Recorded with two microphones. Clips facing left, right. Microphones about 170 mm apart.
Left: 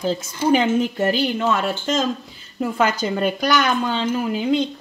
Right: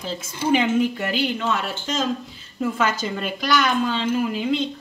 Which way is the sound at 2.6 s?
35° left (ahead or behind).